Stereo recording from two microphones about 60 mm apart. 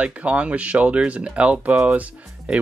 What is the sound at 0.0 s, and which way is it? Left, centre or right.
Speech, right.